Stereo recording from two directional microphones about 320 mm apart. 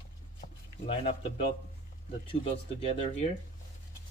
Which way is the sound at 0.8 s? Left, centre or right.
Centre.